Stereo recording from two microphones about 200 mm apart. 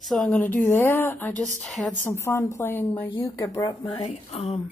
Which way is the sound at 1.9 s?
15° left (ahead or behind).